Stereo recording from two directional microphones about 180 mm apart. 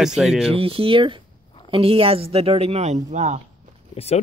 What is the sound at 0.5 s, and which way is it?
Speech, 30° right (ahead or behind).